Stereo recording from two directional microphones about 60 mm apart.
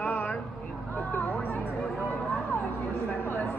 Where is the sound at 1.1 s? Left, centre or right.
Left.